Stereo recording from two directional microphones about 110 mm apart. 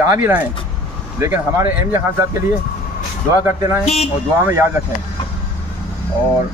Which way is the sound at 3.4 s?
25° right (ahead or behind).